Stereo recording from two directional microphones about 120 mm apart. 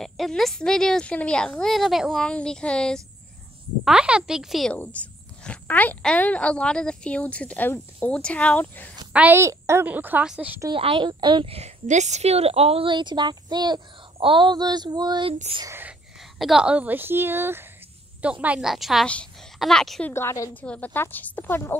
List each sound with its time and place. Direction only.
0.0 s speech: centre (ahead or behind)
3.8 s speech: 5° right (ahead or behind)
4.7 s speech: 10° left (ahead or behind)
9.1 s a child's voice: 10° right (ahead or behind)
9.4 s a woman's voice: 25° right (ahead or behind)
10.7 s a woman's voice: 45° right (ahead or behind)
16.3 s a woman's voice: 5° right (ahead or behind)
20.1 s a woman's voice: 20° left (ahead or behind)